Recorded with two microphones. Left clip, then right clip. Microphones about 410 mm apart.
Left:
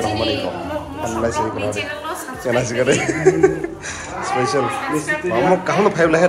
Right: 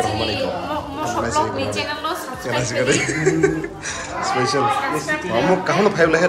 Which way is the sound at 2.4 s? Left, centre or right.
Centre.